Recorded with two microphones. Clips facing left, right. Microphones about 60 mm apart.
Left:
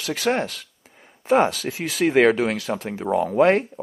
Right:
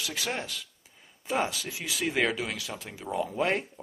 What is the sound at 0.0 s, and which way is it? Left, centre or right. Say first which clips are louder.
Speech: left 11 dB; left.